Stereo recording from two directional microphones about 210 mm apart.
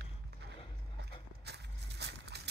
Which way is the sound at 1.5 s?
55° right (ahead or behind).